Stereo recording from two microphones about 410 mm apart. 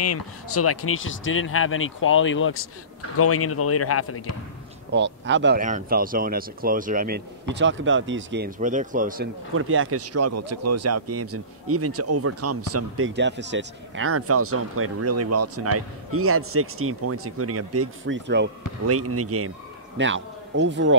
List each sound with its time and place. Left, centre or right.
0.0 s speech: left
4.9 s speech: right